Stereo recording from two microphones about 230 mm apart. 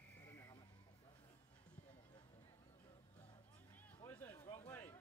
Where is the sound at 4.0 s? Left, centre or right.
Centre.